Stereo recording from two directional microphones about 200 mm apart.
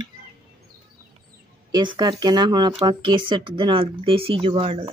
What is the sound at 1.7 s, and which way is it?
Speech, 20° right (ahead or behind).